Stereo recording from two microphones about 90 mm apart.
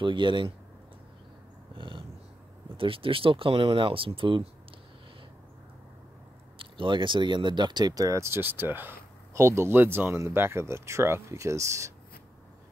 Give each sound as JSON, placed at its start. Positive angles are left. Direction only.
{"t": 0.0, "sound": "speech", "side_deg": -65}
{"t": 1.8, "sound": "dog", "side_deg": -65}
{"t": 2.8, "sound": "speech", "side_deg": -80}
{"t": 6.6, "sound": "speech", "side_deg": -65}